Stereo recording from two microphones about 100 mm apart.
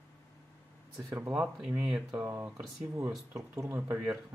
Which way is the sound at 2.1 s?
30° right (ahead or behind).